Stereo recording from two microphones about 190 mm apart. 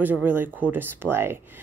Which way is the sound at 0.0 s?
10° right (ahead or behind).